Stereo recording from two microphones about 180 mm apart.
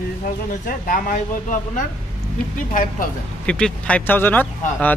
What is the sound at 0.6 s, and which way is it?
Speech, 50° left (ahead or behind).